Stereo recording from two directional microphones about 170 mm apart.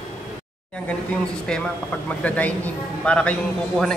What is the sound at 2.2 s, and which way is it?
Speech, 10° left (ahead or behind).